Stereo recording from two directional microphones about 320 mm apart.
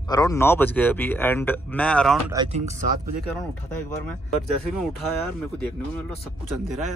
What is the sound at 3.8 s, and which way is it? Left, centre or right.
Speech, centre.